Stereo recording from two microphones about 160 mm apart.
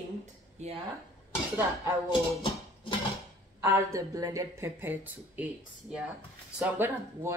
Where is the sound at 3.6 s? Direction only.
20° right (ahead or behind).